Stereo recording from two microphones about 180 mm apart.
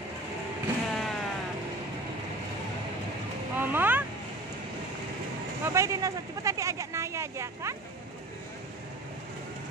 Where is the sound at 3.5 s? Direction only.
10° right (ahead or behind).